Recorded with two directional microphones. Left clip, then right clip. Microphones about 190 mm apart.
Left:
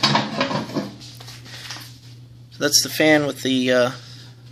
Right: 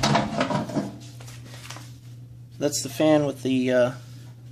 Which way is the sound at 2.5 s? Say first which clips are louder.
Left 7 dB; 5° right (ahead or behind).